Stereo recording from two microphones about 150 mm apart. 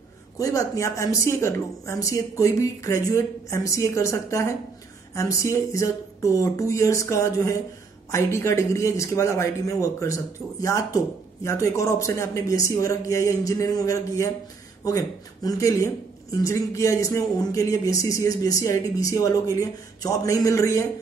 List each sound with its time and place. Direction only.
0.4 s speech: 20° left (ahead or behind)